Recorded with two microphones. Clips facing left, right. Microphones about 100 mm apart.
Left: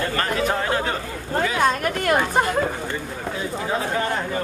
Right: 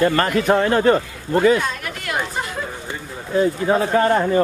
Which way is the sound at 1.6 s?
50° left (ahead or behind).